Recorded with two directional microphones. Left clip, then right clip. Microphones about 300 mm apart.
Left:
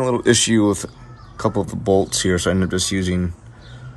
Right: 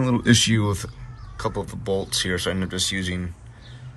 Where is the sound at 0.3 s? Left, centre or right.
Left.